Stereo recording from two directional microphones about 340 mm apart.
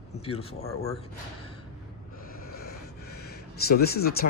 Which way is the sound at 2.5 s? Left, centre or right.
Left.